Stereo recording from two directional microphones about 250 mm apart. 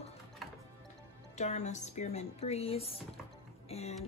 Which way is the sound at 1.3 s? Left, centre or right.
Left.